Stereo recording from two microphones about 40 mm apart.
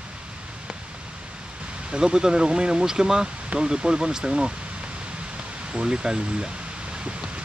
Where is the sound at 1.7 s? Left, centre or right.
Right.